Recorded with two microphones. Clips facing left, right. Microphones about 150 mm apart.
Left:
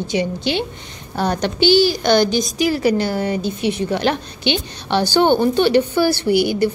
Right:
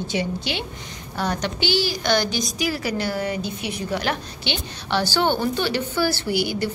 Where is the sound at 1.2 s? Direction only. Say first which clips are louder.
Left 6 dB; 30° left (ahead or behind); by 6.6 s 15° left (ahead or behind).